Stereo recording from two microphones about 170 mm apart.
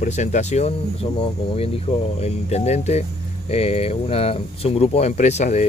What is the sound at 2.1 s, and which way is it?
Speech, 40° left (ahead or behind).